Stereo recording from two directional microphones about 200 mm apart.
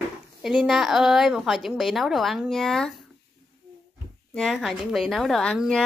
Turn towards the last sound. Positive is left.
turn(degrees=0)  # may be behind; listen again after turning